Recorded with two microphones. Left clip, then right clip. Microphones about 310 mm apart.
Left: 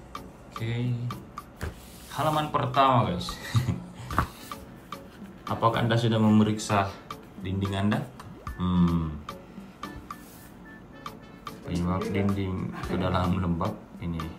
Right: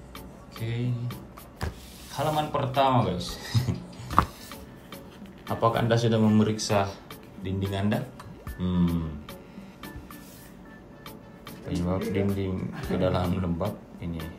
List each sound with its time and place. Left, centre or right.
0.1 s music: centre
2.1 s a sound: centre
8.5 s music: centre
11.1 s speech: centre